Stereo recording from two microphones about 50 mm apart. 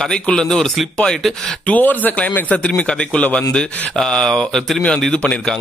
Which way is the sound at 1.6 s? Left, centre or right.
Left.